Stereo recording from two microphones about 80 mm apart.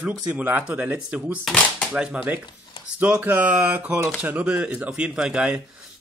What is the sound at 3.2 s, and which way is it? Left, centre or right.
Speech, centre.